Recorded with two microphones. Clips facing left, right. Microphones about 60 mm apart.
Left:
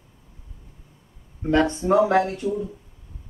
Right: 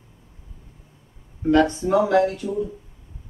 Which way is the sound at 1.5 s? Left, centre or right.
Left.